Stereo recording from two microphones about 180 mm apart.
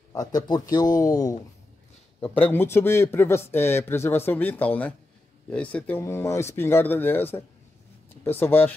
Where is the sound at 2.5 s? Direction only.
15° left (ahead or behind).